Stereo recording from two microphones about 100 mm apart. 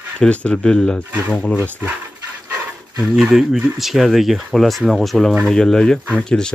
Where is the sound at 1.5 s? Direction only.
15° right (ahead or behind).